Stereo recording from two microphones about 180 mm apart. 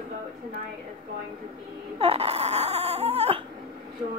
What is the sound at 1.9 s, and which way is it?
Speech, 35° right (ahead or behind).